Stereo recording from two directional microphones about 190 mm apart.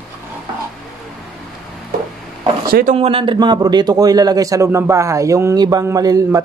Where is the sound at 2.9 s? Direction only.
30° right (ahead or behind).